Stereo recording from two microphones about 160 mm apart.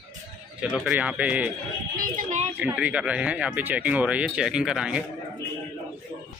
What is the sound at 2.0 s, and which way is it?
Speech, 50° right (ahead or behind).